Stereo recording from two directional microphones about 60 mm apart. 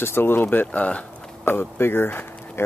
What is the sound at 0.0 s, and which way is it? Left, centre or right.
Speech, left.